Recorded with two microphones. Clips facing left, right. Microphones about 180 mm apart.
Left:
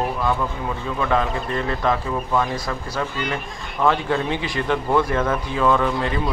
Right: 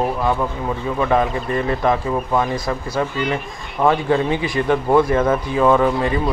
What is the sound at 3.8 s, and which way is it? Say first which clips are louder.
A man's voice: right 4 dB; 10° right (ahead or behind).